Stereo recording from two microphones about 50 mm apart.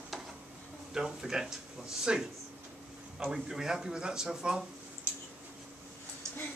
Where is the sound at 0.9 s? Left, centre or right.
Centre.